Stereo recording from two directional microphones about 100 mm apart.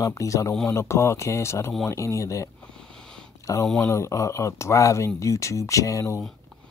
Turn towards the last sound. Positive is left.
turn(degrees=30)  # may be behind; listen again after turning